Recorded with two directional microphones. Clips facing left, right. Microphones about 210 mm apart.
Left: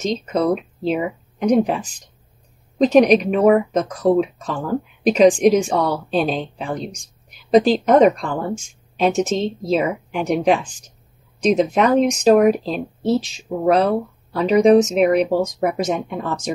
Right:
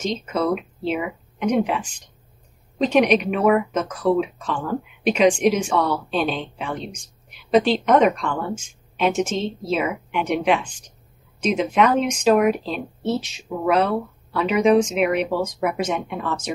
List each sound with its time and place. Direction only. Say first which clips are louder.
0.2 s speech: left 3 dB; 35° left (ahead or behind)